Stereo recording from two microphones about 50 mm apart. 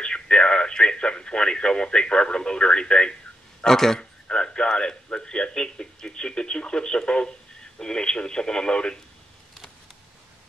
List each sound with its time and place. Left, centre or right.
0.0 s a man's voice: centre